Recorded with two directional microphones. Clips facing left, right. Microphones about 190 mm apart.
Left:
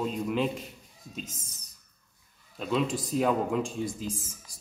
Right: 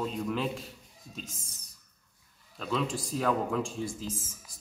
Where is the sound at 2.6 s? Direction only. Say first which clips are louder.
Left 3 dB; 15° left (ahead or behind).